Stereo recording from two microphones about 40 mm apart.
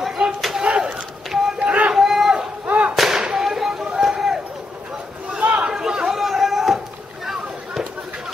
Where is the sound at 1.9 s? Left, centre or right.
Centre.